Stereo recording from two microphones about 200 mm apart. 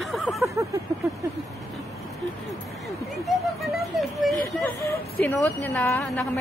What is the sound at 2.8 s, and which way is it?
A woman's voice, centre (ahead or behind).